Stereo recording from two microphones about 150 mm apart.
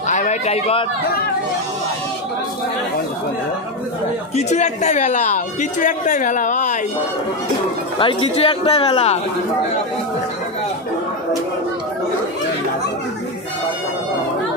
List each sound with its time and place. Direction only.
0.1 s a sound: 50° left (ahead or behind)
4.4 s a man's voice: 50° left (ahead or behind)
8.0 s speech: 35° left (ahead or behind)